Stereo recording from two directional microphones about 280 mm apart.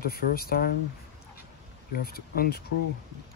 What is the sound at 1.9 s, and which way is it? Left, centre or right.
Speech, left.